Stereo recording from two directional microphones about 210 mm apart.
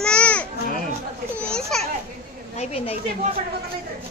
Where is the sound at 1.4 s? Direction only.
5° left (ahead or behind).